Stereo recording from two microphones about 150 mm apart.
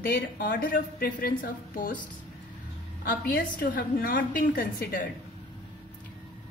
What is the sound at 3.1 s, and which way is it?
A woman's voice, 70° left (ahead or behind).